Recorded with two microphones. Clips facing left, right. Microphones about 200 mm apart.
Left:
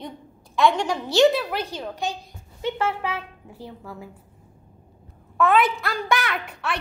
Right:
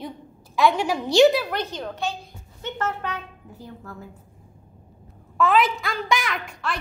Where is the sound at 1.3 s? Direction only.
Centre (ahead or behind).